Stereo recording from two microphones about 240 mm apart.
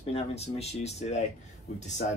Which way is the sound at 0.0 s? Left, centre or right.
Left.